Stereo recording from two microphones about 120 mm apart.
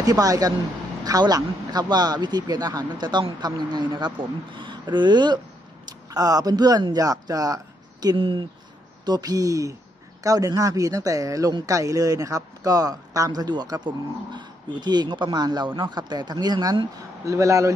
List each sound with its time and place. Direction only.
0.0 s a man's voice: 30° right (ahead or behind)
8.2 s speech: 45° right (ahead or behind)
9.0 s speech: 35° right (ahead or behind)